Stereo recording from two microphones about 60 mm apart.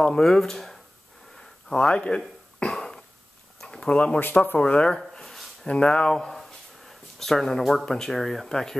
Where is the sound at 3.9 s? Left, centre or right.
Centre.